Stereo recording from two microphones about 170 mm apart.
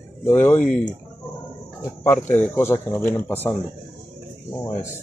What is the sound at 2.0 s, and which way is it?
Speech, 10° left (ahead or behind).